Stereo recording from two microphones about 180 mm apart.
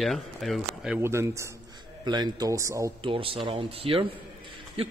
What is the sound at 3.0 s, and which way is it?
Speech, 30° right (ahead or behind).